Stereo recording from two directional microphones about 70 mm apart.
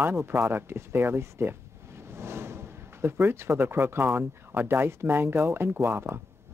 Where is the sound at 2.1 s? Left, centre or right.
Right.